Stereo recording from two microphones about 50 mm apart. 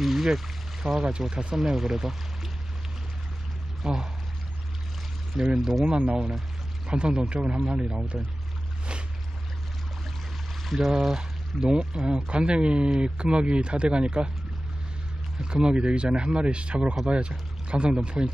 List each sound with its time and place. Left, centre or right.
0.0 s a sound: centre
0.8 s speech: centre
3.8 s speech: centre
5.6 s speech: centre
5.9 s speech: right
10.6 s a sound: centre
11.0 s speech: centre
11.6 s speech: centre
15.5 s speech: right